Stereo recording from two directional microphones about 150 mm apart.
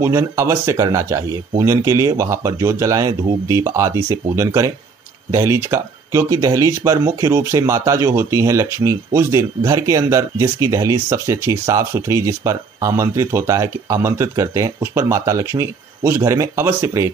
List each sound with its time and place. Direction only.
0.0 s speech: 20° right (ahead or behind)